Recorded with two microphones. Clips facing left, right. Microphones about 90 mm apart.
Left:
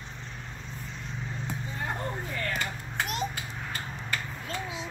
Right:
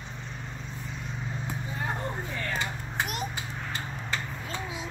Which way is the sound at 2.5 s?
20° right (ahead or behind).